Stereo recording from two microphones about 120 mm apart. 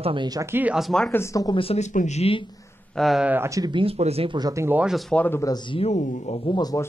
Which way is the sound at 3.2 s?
15° right (ahead or behind).